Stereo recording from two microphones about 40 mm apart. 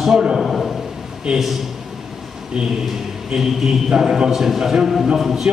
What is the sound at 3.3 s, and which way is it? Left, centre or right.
A man's voice, centre.